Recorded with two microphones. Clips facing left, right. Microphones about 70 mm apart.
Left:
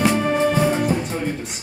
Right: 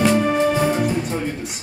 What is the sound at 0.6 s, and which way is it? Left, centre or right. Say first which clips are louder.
Music: even; centre.